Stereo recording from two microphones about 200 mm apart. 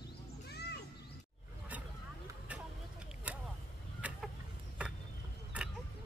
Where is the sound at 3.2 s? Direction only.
5° right (ahead or behind).